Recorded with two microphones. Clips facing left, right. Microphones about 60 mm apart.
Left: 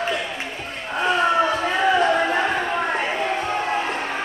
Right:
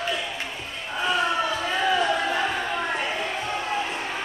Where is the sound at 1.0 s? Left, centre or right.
Left.